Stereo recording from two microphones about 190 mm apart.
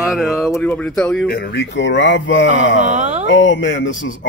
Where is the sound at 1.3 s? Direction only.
60° left (ahead or behind).